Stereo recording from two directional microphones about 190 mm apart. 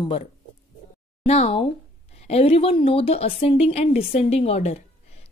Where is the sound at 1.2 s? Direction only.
35° left (ahead or behind).